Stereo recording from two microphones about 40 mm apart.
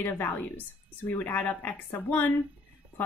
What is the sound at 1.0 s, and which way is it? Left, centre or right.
Speech, left.